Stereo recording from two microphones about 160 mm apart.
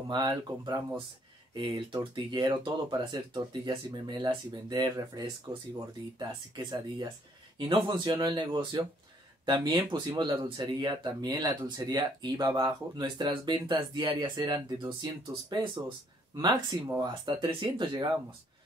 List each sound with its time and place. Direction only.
0.1 s speech: 25° right (ahead or behind)